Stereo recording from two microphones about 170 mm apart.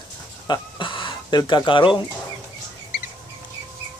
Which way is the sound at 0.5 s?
30° left (ahead or behind).